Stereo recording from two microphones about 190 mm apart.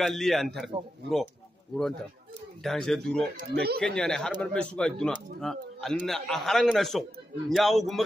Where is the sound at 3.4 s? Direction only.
55° right (ahead or behind).